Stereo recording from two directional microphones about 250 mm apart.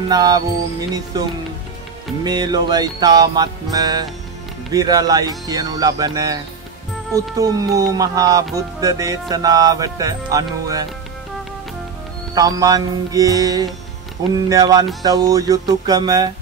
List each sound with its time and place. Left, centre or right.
0.1 s music: centre
2.2 s music: centre
12.4 s music: centre